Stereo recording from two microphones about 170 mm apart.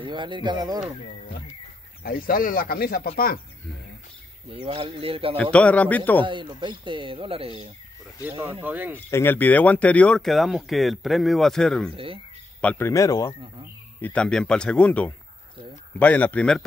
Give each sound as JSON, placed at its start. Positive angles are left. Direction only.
{"t": 0.0, "sound": "speech", "side_deg": -30}
{"t": 2.0, "sound": "speech", "side_deg": 60}
{"t": 4.5, "sound": "speech", "side_deg": -30}
{"t": 5.4, "sound": "speech", "side_deg": 5}
{"t": 6.2, "sound": "speech", "side_deg": -30}
{"t": 8.3, "sound": "speech", "side_deg": -15}
{"t": 8.9, "sound": "speech", "side_deg": 10}
{"t": 11.9, "sound": "speech", "side_deg": -30}
{"t": 12.5, "sound": "speech", "side_deg": 10}
{"t": 14.0, "sound": "speech", "side_deg": 5}